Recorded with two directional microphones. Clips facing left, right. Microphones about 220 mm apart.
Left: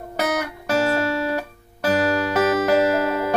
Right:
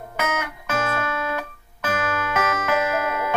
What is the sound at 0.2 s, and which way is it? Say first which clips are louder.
Music: left 4 dB; 35° left (ahead or behind).